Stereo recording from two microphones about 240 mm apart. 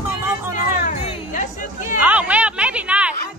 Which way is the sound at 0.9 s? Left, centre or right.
Left.